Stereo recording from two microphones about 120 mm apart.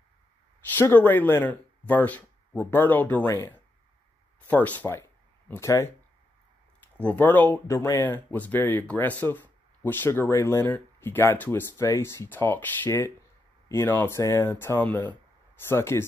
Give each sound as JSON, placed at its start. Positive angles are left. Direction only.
{"t": 0.7, "sound": "speech", "side_deg": 15}
{"t": 4.5, "sound": "speech", "side_deg": 15}
{"t": 7.0, "sound": "speech", "side_deg": 15}